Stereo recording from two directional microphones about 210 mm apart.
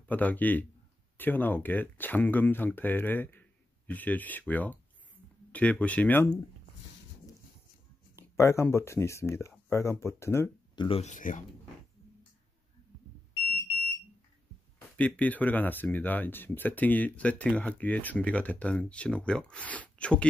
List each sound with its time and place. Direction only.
0.1 s speech: 10° left (ahead or behind)
8.2 s speech: 15° left (ahead or behind)
10.9 s speech: 30° left (ahead or behind)
15.0 s speech: 5° left (ahead or behind)